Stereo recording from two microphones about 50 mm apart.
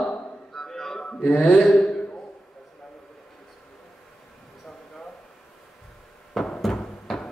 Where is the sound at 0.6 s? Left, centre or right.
Centre.